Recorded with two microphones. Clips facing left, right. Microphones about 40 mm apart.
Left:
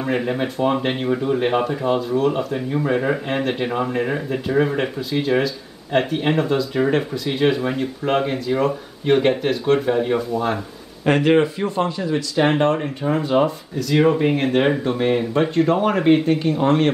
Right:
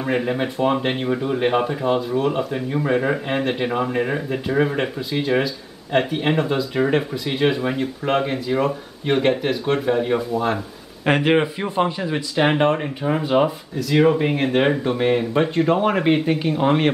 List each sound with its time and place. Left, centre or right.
0.0 s speech: centre
11.1 s speech: centre